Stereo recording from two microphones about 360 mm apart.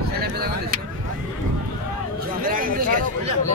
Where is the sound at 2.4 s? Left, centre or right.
Right.